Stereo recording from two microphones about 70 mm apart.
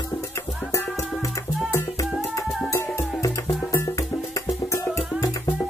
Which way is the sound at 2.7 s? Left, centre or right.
Left.